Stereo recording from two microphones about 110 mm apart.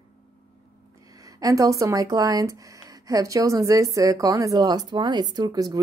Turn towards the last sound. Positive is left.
turn(degrees=-35)  # may be behind; listen again after turning